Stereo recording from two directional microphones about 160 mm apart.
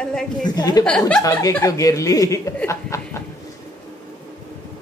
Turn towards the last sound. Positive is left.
turn(degrees=20)  # may be behind; listen again after turning